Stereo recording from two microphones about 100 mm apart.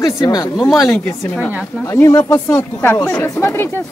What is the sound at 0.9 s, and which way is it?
Speech, 15° left (ahead or behind).